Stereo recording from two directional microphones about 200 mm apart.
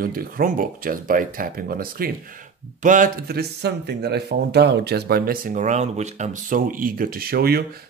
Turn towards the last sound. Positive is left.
turn(degrees=-50)  # may be behind; listen again after turning